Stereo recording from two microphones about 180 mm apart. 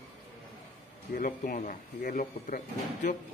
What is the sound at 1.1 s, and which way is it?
Speech, 50° left (ahead or behind).